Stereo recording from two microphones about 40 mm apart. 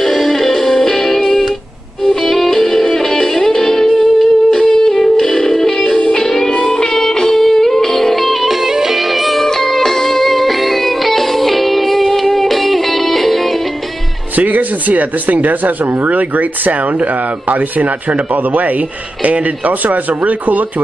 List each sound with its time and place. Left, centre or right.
0.0 s music: centre
14.3 s speech: right